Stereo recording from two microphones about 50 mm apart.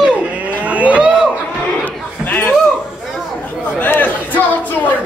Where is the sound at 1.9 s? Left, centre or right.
Left.